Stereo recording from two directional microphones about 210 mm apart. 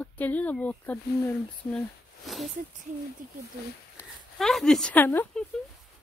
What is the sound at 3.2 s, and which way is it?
Speech, 40° right (ahead or behind).